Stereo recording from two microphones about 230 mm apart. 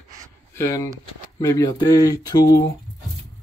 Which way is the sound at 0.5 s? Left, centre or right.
Centre.